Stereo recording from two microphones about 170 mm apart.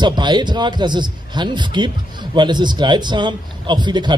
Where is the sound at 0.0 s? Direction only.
25° right (ahead or behind).